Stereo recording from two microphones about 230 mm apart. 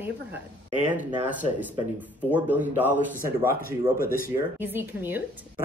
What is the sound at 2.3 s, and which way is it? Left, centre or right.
Speech, centre.